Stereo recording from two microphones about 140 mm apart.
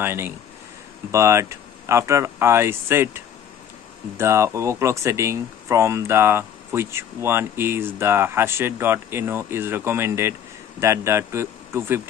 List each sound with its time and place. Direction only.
0.0 s speech: 15° right (ahead or behind)